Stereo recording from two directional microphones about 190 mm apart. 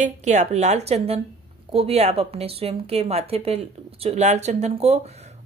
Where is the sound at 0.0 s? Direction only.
35° right (ahead or behind).